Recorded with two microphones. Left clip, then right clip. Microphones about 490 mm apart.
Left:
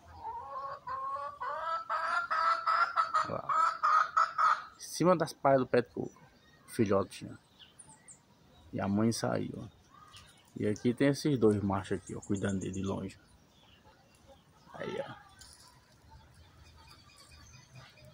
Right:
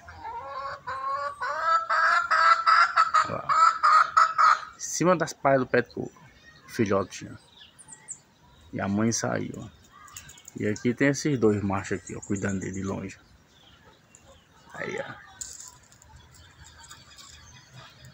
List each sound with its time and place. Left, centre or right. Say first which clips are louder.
0.8 s fowl: right 8 dB; left
4.7 s speech: right 5 dB; left
8.7 s speech: right 5 dB; left
10.6 s speech: right 5 dB; left
14.8 s a sound: right 6 dB; left